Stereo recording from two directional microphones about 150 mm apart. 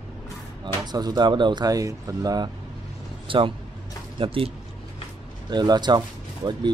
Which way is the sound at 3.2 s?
35° right (ahead or behind).